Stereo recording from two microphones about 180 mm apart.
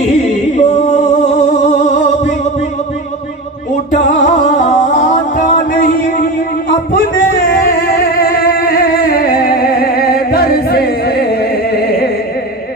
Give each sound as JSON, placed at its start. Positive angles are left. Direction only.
{"t": 0.3, "sound": "singing", "side_deg": 40}
{"t": 3.9, "sound": "music", "side_deg": 40}
{"t": 7.3, "sound": "music", "side_deg": 55}
{"t": 11.7, "sound": "opera", "side_deg": 60}